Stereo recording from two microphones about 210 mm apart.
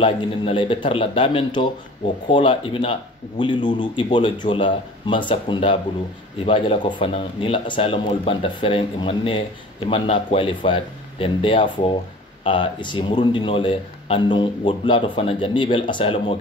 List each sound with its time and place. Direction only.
0.0 s speech: 25° left (ahead or behind)